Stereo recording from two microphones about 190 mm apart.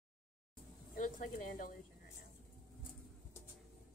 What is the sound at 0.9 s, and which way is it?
Speech, 45° left (ahead or behind).